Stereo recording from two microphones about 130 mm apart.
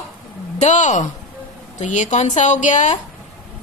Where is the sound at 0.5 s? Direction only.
70° left (ahead or behind).